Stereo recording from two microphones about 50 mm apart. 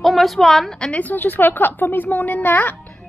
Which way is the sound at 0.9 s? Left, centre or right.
Left.